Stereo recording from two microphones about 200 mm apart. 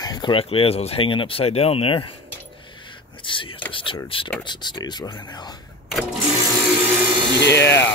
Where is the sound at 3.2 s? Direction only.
25° left (ahead or behind).